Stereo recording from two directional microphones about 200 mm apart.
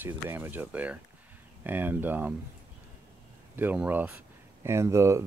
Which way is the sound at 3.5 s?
10° right (ahead or behind).